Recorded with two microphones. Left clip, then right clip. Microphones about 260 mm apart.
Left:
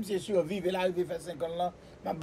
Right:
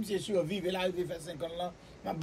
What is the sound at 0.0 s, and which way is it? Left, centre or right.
A man's voice, centre.